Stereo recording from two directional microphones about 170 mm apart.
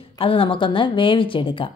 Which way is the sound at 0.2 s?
35° left (ahead or behind).